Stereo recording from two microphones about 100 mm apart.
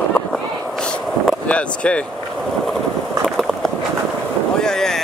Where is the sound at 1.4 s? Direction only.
10° left (ahead or behind).